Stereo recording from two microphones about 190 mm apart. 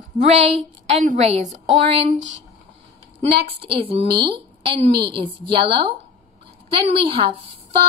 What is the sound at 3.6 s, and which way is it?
Speech, 30° right (ahead or behind).